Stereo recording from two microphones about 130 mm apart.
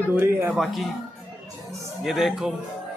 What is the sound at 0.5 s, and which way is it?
Speech, centre (ahead or behind).